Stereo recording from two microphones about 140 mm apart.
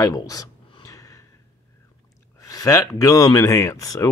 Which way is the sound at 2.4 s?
25° left (ahead or behind).